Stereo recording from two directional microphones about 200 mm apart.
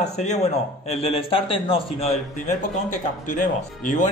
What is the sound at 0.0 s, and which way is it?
Speech, 35° left (ahead or behind).